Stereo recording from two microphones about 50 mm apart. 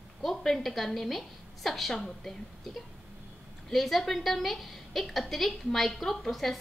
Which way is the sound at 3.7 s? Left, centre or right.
Centre.